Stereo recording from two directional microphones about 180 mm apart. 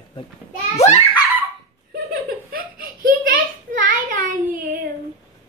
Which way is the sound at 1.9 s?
55° right (ahead or behind).